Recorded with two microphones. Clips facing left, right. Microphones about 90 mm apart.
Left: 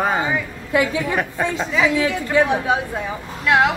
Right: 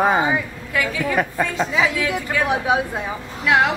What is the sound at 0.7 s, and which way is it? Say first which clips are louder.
Speech: left 2 dB; 25° left (ahead or behind).